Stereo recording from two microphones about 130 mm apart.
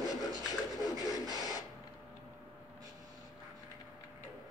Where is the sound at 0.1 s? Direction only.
30° left (ahead or behind).